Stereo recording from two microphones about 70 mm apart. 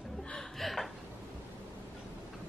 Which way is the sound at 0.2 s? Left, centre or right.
Centre.